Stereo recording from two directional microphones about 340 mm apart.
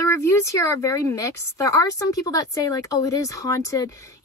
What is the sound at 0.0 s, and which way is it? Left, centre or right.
Speech, centre.